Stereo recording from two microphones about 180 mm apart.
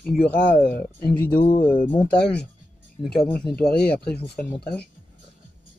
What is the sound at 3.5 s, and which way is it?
Speech, 65° left (ahead or behind).